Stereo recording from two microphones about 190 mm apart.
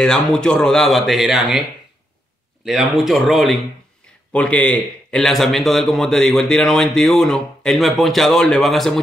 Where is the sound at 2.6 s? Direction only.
Centre (ahead or behind).